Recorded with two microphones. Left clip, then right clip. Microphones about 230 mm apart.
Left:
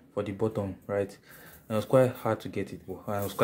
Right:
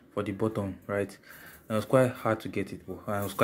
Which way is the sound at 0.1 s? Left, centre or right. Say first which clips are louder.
Even; centre.